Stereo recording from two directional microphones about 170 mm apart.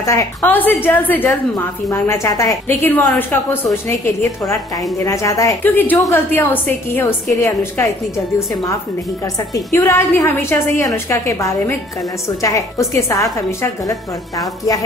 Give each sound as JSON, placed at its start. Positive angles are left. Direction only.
{"t": 0.0, "sound": "a woman's voice", "side_deg": 20}
{"t": 5.0, "sound": "a woman's voice", "side_deg": 20}
{"t": 9.8, "sound": "a woman's voice", "side_deg": 15}